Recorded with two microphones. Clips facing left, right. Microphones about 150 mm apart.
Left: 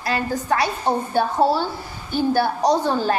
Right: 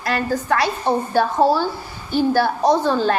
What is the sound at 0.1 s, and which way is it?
Speech, 15° left (ahead or behind).